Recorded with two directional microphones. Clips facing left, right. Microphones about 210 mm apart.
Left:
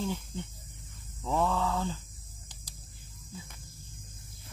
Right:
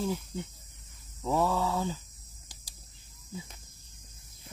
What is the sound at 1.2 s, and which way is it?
Speech, 5° right (ahead or behind).